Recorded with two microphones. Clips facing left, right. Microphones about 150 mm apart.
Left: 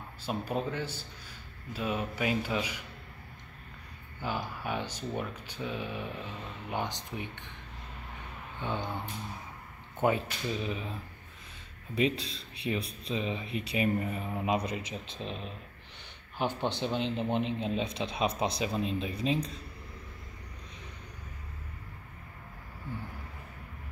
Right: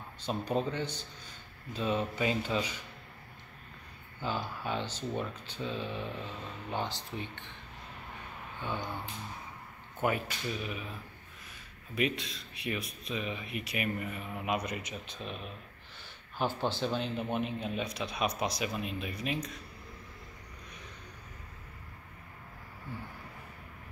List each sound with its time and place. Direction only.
0.2 s speech: 5° left (ahead or behind)
4.2 s speech: 15° left (ahead or behind)
8.6 s speech: 20° left (ahead or behind)
9.9 s speech: 25° left (ahead or behind)
11.9 s speech: 30° left (ahead or behind)